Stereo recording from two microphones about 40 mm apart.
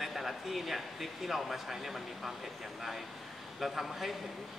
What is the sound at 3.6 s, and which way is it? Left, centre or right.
Speech, centre.